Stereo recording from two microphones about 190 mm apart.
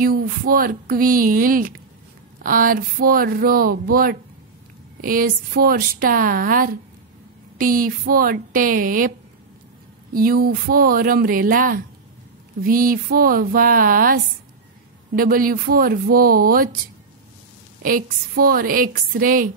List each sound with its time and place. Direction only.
0.0 s a woman's voice: 50° right (ahead or behind)
10.1 s a woman's voice: 50° right (ahead or behind)
17.8 s a woman's voice: 50° right (ahead or behind)